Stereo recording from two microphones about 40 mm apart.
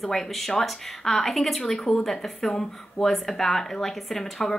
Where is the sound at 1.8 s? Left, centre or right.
Centre.